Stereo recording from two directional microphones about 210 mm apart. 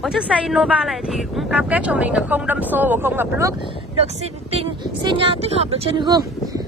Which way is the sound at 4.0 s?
30° right (ahead or behind).